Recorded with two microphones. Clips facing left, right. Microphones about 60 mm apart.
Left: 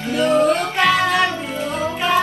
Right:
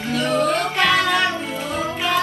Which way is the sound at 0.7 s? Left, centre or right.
Centre.